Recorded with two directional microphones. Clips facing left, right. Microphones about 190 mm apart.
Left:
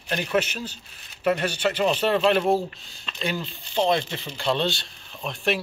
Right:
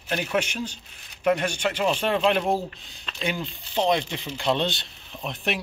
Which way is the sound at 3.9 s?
15° right (ahead or behind).